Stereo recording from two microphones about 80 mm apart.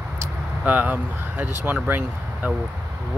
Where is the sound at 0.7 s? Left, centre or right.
Right.